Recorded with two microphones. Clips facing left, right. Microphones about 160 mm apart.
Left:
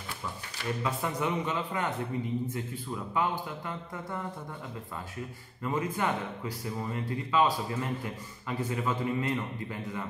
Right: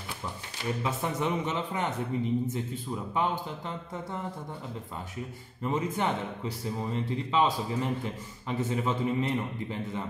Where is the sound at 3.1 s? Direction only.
20° right (ahead or behind).